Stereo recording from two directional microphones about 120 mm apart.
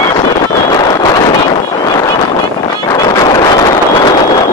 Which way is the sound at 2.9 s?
30° left (ahead or behind).